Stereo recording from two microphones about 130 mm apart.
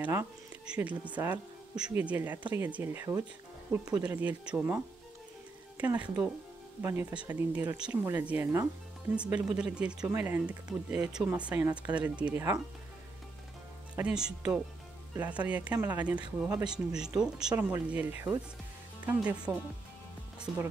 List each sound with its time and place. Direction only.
0.0 s speech: 20° right (ahead or behind)
5.8 s speech: 10° right (ahead or behind)
13.9 s speech: 5° right (ahead or behind)
17.6 s speech: 15° right (ahead or behind)